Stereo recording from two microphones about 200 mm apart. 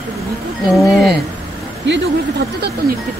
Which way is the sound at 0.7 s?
Centre (ahead or behind).